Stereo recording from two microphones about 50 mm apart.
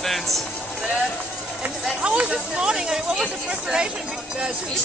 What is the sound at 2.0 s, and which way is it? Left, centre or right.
Speech, right.